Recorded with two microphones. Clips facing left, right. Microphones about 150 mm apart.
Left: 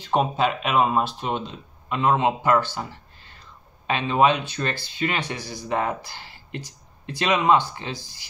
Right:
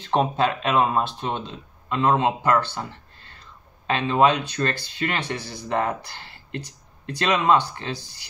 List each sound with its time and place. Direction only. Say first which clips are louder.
0.1 s a man's voice: even; 10° left (ahead or behind)